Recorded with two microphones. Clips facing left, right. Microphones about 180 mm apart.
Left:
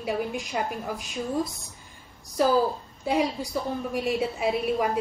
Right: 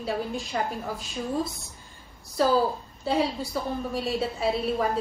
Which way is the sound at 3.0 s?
15° left (ahead or behind).